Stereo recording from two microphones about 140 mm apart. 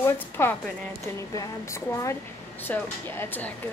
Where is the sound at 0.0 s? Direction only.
15° left (ahead or behind).